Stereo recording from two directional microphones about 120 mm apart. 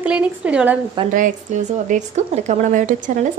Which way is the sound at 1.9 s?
75° right (ahead or behind).